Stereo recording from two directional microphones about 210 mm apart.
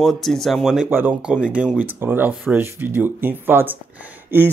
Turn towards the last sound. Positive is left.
turn(degrees=-10)  # may be behind; listen again after turning